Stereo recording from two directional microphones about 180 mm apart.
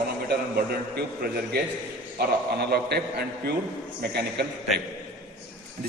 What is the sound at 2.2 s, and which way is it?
Speech, 65° right (ahead or behind).